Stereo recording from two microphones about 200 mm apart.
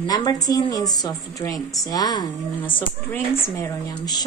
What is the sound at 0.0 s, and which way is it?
Speech, 20° left (ahead or behind).